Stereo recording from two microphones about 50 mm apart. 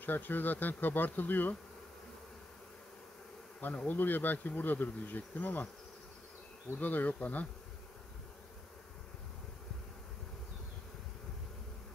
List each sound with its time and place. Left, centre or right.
0.0 s bee: left
3.6 s bee: left
6.8 s bee: left